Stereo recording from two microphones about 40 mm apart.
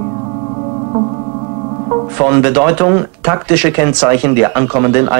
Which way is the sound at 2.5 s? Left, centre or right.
Right.